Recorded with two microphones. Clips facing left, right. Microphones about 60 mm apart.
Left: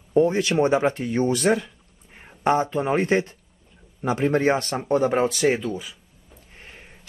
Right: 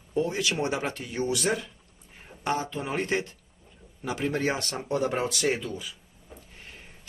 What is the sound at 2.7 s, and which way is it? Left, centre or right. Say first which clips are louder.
Speech: left 8 dB; left.